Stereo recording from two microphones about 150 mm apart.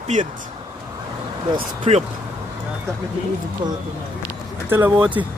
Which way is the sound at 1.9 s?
45° right (ahead or behind).